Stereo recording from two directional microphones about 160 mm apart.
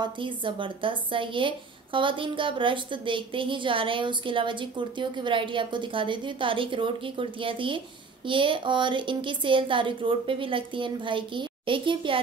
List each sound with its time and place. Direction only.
0.0 s a woman's voice: 30° right (ahead or behind)